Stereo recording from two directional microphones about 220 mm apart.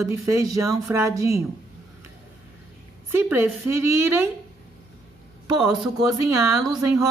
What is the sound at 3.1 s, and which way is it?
Speech, 10° right (ahead or behind).